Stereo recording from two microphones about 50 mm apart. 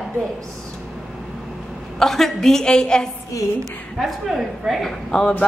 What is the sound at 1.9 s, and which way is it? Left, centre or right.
A woman's voice, centre.